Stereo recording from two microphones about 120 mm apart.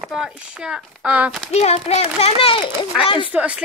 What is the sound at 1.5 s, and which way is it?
A child's voice, 65° left (ahead or behind).